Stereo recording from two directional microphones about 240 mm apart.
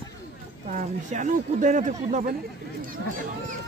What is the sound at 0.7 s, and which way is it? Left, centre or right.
Speech, right.